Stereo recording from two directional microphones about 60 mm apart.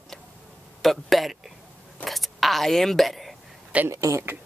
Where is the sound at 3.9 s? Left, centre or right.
Right.